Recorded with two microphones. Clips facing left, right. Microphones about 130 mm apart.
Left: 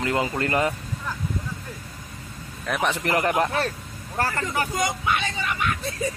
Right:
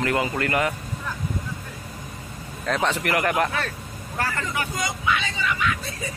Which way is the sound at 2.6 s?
10° left (ahead or behind).